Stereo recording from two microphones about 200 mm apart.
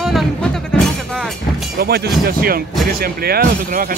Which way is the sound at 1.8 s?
50° right (ahead or behind).